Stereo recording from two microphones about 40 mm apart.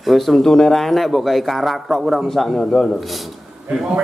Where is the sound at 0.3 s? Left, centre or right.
Centre.